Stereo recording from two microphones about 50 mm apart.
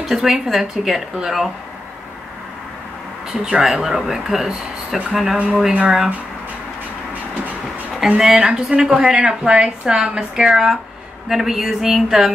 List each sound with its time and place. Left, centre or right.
0.0 s a woman's voice: centre
3.3 s a woman's voice: centre
3.8 s a woman's voice: centre
5.7 s speech: centre
8.0 s a woman's voice: centre